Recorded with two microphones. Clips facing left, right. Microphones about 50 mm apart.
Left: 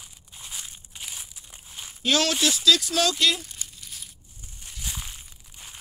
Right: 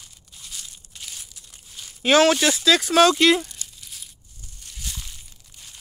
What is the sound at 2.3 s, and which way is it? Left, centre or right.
Speech, right.